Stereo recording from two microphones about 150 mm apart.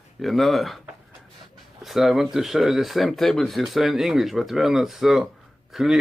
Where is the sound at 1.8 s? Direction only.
Centre (ahead or behind).